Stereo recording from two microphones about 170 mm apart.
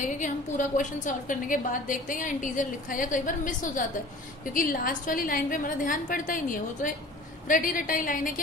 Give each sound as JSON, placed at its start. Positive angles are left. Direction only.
{"t": 0.0, "sound": "a woman's voice", "side_deg": 50}